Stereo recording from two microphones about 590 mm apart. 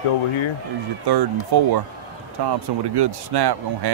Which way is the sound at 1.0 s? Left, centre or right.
Right.